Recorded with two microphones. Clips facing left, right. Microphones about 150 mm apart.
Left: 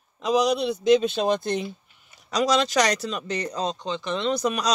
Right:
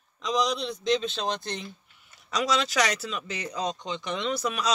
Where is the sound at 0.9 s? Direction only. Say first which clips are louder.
Left 8 dB; 55° left (ahead or behind).